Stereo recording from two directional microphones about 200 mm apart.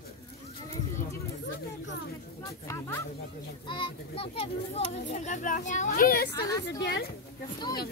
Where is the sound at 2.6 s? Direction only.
15° left (ahead or behind).